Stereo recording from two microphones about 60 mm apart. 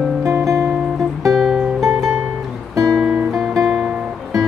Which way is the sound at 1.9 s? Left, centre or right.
Right.